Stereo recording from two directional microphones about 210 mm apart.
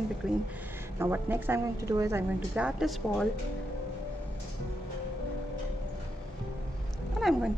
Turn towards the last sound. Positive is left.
turn(degrees=0)  # may be behind; listen again after turning